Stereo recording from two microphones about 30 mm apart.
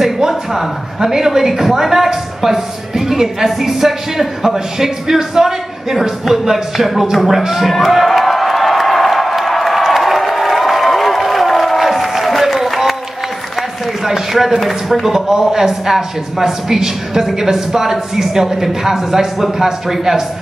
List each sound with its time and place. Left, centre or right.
0.3 s speech: centre
8.1 s a sound: centre
14.7 s speech: centre
15.1 s speech: centre